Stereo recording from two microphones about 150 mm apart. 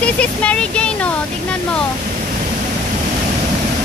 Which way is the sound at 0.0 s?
10° left (ahead or behind).